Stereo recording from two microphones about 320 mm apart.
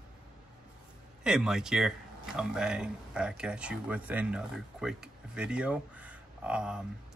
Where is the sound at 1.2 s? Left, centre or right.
Centre.